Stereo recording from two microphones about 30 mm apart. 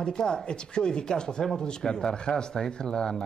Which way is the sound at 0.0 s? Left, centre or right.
Left.